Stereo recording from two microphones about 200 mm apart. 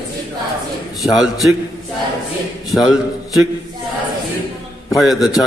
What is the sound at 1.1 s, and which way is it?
Speech, centre (ahead or behind).